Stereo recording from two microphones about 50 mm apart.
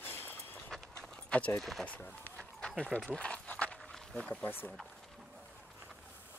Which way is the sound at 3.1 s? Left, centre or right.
Left.